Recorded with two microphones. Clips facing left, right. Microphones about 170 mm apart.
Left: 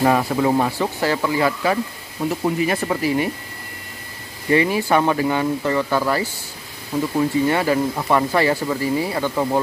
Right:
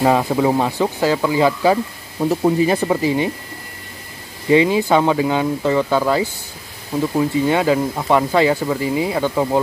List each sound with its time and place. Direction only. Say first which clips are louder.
0.0 s speech: right 2 dB; 15° right (ahead or behind)
4.5 s speech: right 4 dB; 20° right (ahead or behind)
7.4 s speech: right 2 dB; 15° right (ahead or behind)